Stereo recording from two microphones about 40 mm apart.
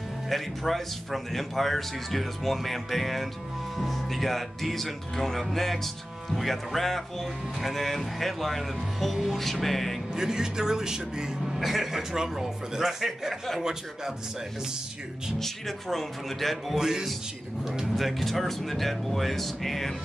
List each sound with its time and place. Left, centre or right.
0.3 s speech: centre
10.1 s a man's voice: centre
11.6 s a man's voice: centre
15.3 s speech: centre
16.7 s a man's voice: centre
17.8 s speech: centre